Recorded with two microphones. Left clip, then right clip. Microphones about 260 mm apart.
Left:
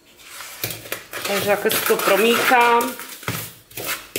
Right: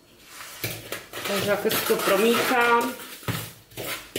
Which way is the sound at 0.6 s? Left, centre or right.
Centre.